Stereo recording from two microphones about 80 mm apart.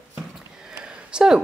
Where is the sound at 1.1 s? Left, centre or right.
Centre.